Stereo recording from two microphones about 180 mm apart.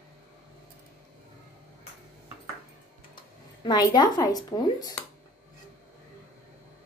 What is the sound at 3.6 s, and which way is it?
Speech, 20° left (ahead or behind).